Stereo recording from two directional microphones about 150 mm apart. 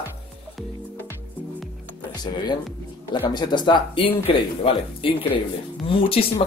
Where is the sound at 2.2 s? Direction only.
30° left (ahead or behind).